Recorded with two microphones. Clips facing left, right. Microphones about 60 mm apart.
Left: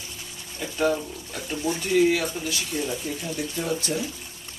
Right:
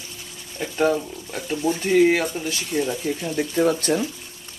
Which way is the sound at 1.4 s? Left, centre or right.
Centre.